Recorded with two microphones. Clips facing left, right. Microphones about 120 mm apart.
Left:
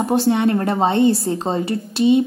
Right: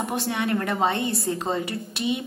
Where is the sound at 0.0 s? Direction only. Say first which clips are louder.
Left 10 dB; 30° left (ahead or behind).